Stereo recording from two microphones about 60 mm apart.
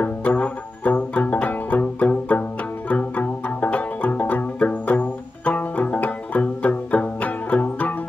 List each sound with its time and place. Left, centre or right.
0.0 s music: left